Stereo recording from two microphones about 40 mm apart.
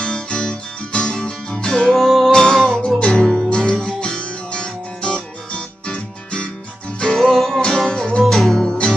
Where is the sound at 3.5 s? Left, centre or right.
Left.